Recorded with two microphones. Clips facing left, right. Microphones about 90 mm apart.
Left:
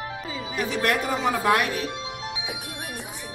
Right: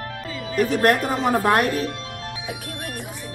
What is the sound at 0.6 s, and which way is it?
Speech, 45° right (ahead or behind).